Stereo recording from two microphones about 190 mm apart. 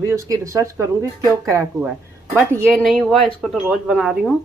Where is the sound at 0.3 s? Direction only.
15° right (ahead or behind).